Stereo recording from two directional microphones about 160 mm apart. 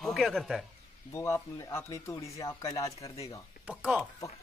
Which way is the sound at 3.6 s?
10° right (ahead or behind).